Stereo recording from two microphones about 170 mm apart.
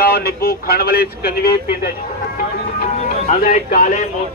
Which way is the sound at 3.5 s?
50° left (ahead or behind).